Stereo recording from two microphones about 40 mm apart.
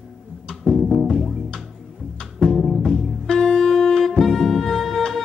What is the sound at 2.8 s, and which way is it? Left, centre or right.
Music, centre.